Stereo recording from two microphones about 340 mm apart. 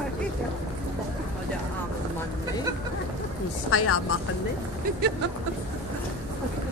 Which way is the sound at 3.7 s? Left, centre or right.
Left.